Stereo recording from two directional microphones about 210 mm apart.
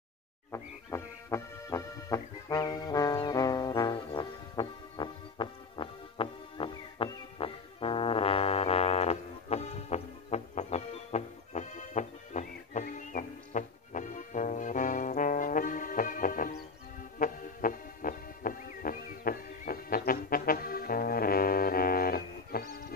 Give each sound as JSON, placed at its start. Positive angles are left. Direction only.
{"t": 0.5, "sound": "music", "side_deg": 15}